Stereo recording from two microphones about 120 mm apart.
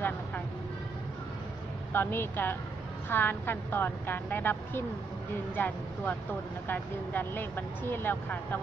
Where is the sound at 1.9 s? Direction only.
15° left (ahead or behind).